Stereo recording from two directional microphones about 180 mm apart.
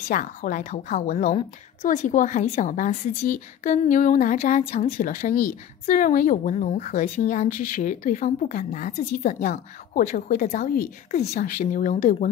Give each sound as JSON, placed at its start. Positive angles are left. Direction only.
{"t": 0.1, "sound": "a woman's voice", "side_deg": 45}
{"t": 11.1, "sound": "a woman's voice", "side_deg": 40}